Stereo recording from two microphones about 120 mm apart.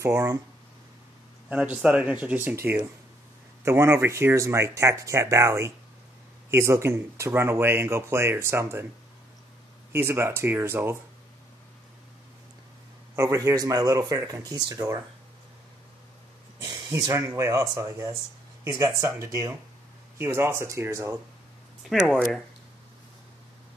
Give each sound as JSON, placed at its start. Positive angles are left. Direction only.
{"t": 0.0, "sound": "speech", "side_deg": -25}
{"t": 1.5, "sound": "speech", "side_deg": -10}
{"t": 9.9, "sound": "speech", "side_deg": -20}
{"t": 13.1, "sound": "speech", "side_deg": -25}
{"t": 16.6, "sound": "speech", "side_deg": -30}
{"t": 21.8, "sound": "speech", "side_deg": 0}